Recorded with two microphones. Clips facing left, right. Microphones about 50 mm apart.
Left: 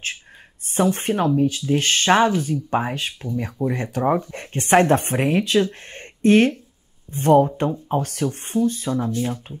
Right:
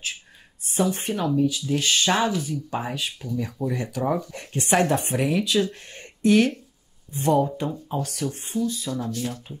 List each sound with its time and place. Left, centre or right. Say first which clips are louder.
0.7 s speech: left 4 dB; left